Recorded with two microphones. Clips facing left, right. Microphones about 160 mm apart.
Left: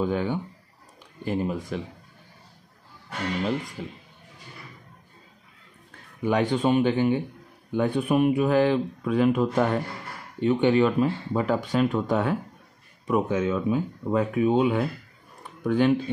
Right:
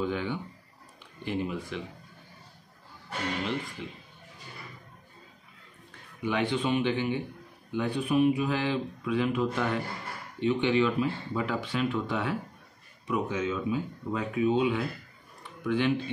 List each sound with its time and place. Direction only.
0.0 s speech: 45° left (ahead or behind)
3.4 s speech: 40° left (ahead or behind)
6.2 s speech: 45° left (ahead or behind)